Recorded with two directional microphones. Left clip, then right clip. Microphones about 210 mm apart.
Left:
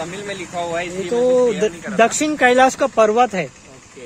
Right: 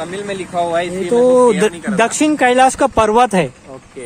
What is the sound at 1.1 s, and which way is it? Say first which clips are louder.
Speech: right 5 dB; 15° right (ahead or behind).